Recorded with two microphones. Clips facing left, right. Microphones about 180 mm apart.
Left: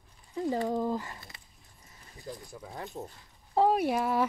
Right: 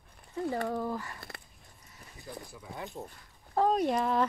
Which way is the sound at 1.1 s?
55° right (ahead or behind).